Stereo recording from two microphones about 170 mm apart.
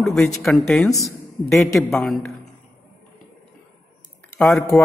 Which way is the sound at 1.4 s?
Centre (ahead or behind).